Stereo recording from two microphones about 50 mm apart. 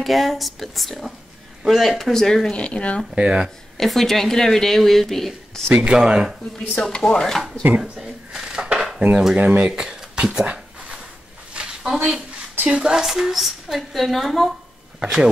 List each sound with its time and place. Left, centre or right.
0.0 s speech: centre
2.5 s speech: left
3.2 s speech: centre
3.7 s speech: centre
5.8 s speech: centre
6.8 s speech: centre
7.8 s speech: centre
8.7 s dishes: centre
9.3 s speech: right
9.8 s speech: centre
10.4 s a sound: right
11.8 s a woman's voice: centre
15.0 s speech: centre